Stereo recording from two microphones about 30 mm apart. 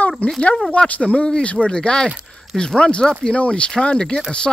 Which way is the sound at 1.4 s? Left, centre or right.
Left.